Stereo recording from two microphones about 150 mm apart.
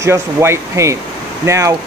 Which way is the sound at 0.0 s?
20° right (ahead or behind).